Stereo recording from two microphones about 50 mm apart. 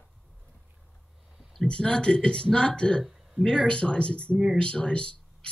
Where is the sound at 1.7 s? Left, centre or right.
Centre.